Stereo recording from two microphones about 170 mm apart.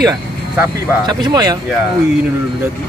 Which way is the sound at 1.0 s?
25° right (ahead or behind).